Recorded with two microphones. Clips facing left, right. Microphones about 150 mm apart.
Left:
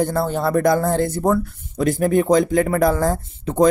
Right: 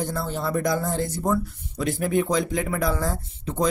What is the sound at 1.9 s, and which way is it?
Speech, 45° left (ahead or behind).